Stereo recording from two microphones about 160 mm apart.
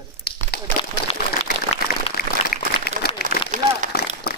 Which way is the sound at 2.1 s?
70° left (ahead or behind).